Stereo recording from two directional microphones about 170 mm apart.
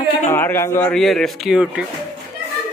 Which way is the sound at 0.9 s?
Centre (ahead or behind).